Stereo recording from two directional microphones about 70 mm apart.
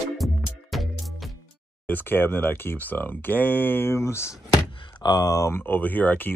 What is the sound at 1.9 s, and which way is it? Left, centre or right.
Speech, left.